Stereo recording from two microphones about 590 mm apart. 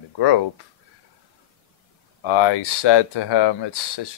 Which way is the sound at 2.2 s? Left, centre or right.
Left.